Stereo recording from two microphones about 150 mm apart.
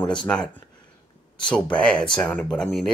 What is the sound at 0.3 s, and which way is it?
Speech, 5° left (ahead or behind).